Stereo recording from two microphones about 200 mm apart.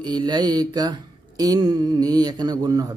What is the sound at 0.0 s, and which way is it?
Mantra, 20° right (ahead or behind).